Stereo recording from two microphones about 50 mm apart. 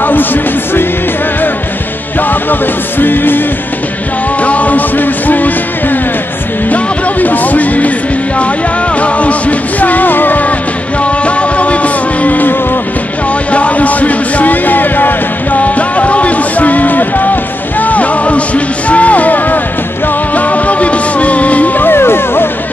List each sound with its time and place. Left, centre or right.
0.0 s music: left
2.2 s music: left
4.4 s music: left
9.0 s music: left
11.1 s music: left